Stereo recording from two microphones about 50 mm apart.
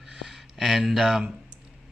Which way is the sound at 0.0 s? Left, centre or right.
Centre.